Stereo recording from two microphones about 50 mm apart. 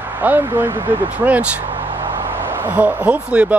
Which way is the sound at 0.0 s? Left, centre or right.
Right.